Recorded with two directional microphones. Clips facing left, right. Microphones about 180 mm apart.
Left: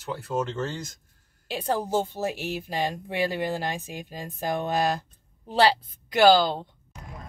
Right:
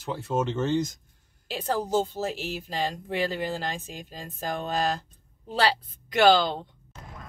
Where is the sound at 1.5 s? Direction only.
15° left (ahead or behind).